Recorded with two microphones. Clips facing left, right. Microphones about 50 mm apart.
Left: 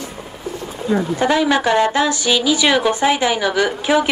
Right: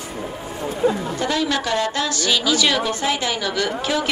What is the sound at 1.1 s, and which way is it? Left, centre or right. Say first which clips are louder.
A woman's voice: left 6 dB; left.